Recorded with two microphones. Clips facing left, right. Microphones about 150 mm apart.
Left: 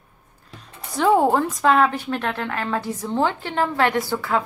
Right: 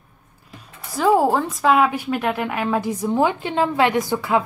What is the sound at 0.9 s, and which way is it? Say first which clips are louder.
A woman's voice: even; centre (ahead or behind).